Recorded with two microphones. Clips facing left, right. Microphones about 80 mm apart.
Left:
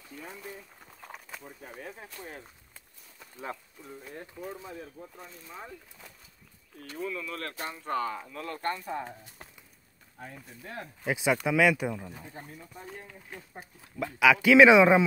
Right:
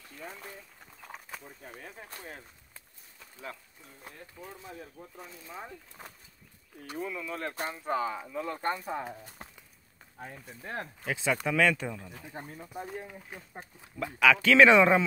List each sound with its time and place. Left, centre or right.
1.0 s speech: centre
5.2 s speech: centre
6.8 s speech: centre
10.6 s speech: right
11.1 s speech: centre
12.8 s speech: centre
14.2 s speech: centre